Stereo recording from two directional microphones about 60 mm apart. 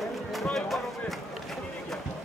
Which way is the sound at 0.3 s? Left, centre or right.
Centre.